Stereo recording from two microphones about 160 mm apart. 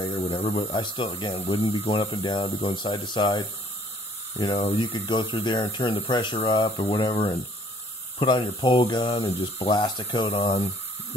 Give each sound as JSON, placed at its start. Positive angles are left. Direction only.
{"t": 0.0, "sound": "speech", "side_deg": 30}
{"t": 0.6, "sound": "speech", "side_deg": 25}